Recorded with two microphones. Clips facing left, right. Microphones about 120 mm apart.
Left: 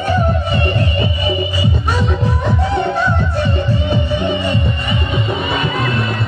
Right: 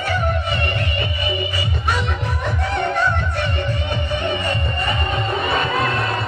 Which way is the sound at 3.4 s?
25° left (ahead or behind).